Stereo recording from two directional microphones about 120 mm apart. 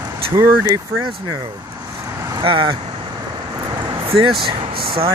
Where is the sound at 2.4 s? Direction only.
45° right (ahead or behind).